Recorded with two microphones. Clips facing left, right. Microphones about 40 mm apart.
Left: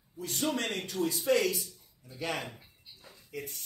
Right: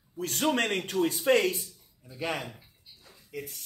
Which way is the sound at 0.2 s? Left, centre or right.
Right.